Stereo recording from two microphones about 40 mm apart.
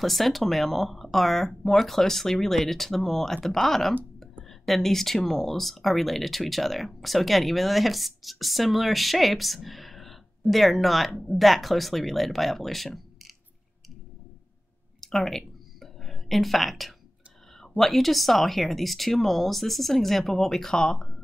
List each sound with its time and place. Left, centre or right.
0.0 s speech: centre
15.0 s a sound: centre
17.6 s speech: centre
20.7 s speech: centre